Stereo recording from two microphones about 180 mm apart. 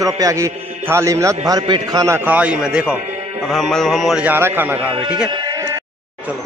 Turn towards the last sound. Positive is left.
turn(degrees=-25)  # may be behind; listen again after turning